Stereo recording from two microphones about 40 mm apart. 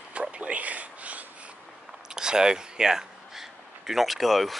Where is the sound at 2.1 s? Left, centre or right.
Centre.